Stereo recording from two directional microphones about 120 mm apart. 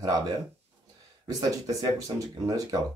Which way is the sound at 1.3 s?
30° right (ahead or behind).